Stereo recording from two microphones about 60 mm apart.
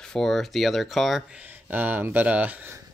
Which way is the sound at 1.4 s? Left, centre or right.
Right.